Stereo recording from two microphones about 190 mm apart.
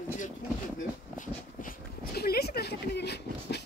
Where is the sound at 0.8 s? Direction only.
45° left (ahead or behind).